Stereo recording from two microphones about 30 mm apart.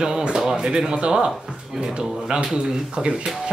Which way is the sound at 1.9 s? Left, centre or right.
Right.